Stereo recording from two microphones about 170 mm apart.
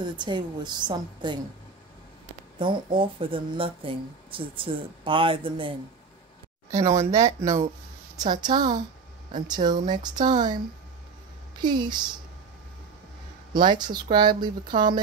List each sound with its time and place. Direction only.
0.0 s a woman's voice: 25° right (ahead or behind)
3.0 s speech: 30° right (ahead or behind)
6.7 s a woman's voice: 15° right (ahead or behind)
13.5 s a woman's voice: 25° right (ahead or behind)